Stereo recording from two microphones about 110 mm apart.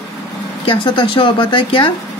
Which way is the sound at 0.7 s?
50° left (ahead or behind).